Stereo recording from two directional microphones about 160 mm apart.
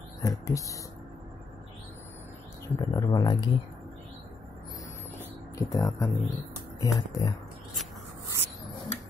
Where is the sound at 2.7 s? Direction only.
25° left (ahead or behind).